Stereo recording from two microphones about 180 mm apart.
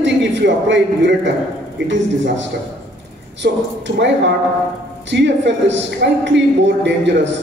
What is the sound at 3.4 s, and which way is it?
Speech, 70° right (ahead or behind).